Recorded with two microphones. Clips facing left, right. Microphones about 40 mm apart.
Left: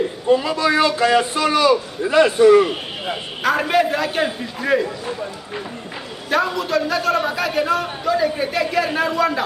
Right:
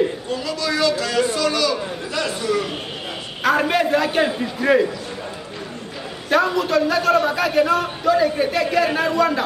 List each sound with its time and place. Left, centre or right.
0.3 s a man's voice: left
3.4 s a man's voice: centre
6.3 s a man's voice: centre